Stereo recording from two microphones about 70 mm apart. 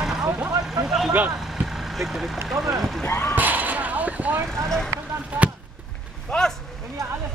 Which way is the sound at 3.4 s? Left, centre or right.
Right.